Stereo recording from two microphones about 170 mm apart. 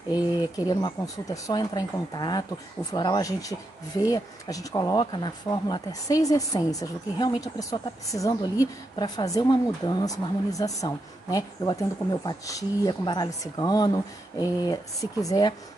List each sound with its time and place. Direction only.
0.7 s speech: 20° left (ahead or behind)